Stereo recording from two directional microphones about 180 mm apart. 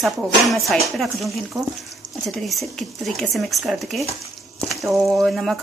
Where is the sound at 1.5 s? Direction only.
20° right (ahead or behind).